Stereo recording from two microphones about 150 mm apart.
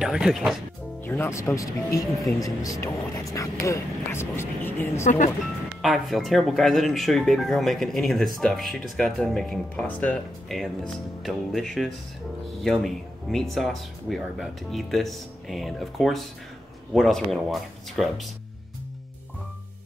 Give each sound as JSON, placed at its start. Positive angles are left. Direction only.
{"t": 0.0, "sound": "speech", "side_deg": -5}
{"t": 1.0, "sound": "speech", "side_deg": 15}
{"t": 5.8, "sound": "speech", "side_deg": 0}